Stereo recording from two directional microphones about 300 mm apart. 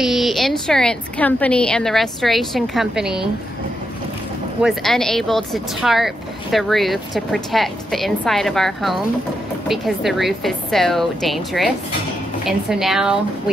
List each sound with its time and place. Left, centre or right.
0.0 s speech: centre
4.6 s speech: centre